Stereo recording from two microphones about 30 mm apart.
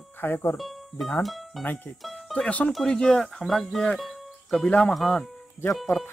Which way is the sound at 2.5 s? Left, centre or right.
Left.